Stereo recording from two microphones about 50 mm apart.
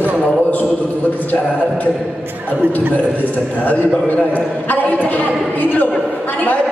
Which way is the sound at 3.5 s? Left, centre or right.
Left.